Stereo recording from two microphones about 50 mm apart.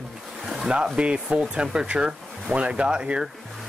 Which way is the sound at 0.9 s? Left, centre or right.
Right.